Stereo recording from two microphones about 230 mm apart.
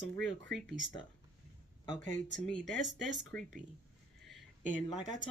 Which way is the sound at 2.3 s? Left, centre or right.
Centre.